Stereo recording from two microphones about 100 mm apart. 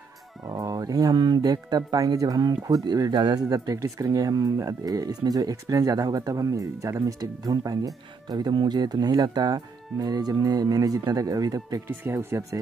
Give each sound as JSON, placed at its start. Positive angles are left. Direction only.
{"t": 0.6, "sound": "speech", "side_deg": -35}
{"t": 12.0, "sound": "speech", "side_deg": -25}